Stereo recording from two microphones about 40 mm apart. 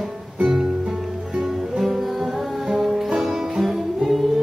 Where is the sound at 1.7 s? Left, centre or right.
Centre.